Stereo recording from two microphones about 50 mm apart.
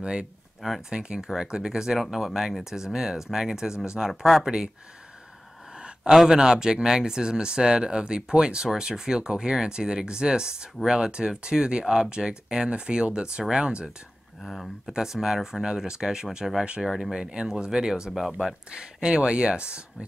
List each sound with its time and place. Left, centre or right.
0.0 s speech: centre
0.6 s speech: centre
0.9 s speech: centre
5.8 s speech: centre
14.4 s speech: centre
14.9 s speech: centre